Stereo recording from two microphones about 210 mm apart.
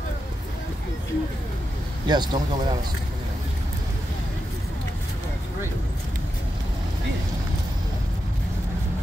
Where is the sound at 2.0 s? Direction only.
20° right (ahead or behind).